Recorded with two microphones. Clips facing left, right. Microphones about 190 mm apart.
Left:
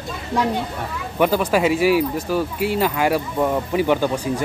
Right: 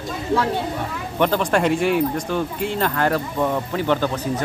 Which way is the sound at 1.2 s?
5° left (ahead or behind).